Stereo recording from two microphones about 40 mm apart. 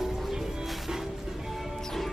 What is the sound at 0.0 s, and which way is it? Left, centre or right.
Music, centre.